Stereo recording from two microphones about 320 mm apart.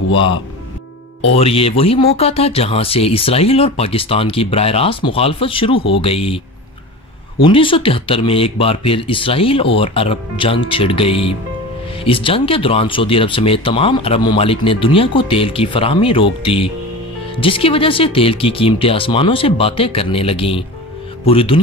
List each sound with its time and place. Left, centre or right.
1.2 s speech: centre
7.4 s speech: centre